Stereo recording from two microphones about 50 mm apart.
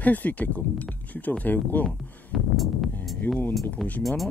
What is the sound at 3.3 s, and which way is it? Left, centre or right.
Speech, left.